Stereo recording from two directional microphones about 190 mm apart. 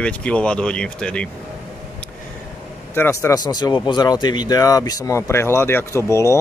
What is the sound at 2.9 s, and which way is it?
Speech, 15° left (ahead or behind).